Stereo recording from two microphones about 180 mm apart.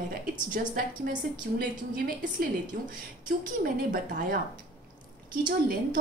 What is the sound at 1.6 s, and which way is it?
A woman's voice, 50° right (ahead or behind).